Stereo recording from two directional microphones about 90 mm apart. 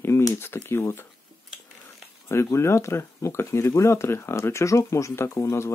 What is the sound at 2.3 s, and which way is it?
Speech, 30° left (ahead or behind).